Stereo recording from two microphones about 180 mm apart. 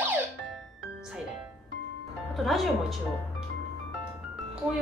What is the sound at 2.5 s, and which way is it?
Speech, centre (ahead or behind).